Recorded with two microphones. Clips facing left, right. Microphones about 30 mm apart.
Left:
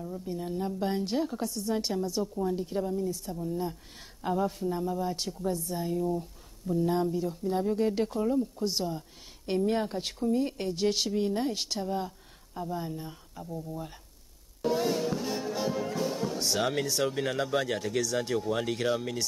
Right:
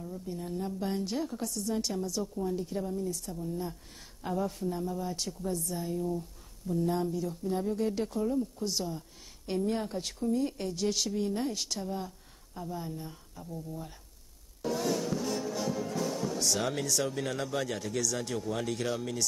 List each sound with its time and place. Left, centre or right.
0.0 s a woman's voice: centre
14.6 s music: centre
18.3 s a woman's voice: centre